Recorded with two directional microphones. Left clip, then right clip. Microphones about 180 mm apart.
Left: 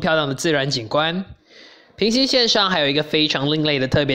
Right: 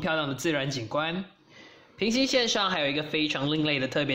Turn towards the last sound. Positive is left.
turn(degrees=30)  # may be behind; listen again after turning